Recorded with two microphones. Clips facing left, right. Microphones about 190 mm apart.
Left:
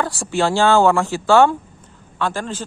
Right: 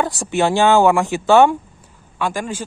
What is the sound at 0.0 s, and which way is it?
A man's voice, 20° right (ahead or behind).